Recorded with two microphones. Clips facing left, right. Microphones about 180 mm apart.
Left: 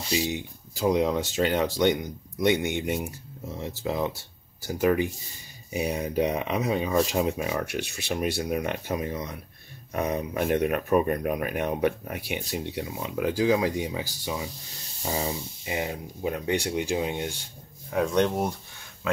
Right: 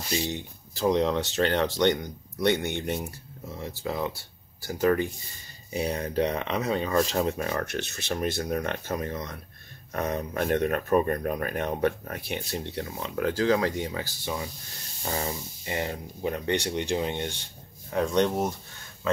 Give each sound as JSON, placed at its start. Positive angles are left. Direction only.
{"t": 0.1, "sound": "speech", "side_deg": 10}